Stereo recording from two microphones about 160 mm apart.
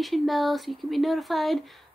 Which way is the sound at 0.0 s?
Centre (ahead or behind).